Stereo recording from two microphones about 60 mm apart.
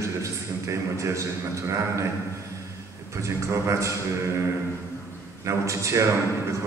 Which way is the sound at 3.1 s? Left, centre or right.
Right.